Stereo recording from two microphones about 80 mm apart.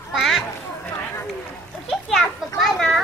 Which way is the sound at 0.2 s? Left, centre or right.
Centre.